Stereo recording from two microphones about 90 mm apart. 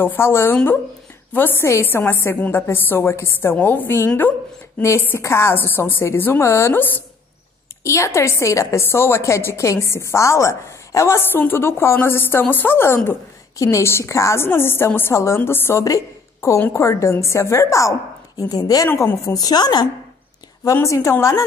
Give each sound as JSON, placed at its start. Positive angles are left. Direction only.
{"t": 0.0, "sound": "a woman's voice", "side_deg": 25}
{"t": 11.3, "sound": "a woman's voice", "side_deg": 25}
{"t": 15.8, "sound": "a woman's voice", "side_deg": 35}
{"t": 18.5, "sound": "a woman's voice", "side_deg": 45}
{"t": 20.6, "sound": "a woman's voice", "side_deg": 35}